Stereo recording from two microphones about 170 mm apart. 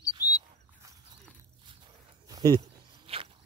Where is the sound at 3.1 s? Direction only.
35° right (ahead or behind).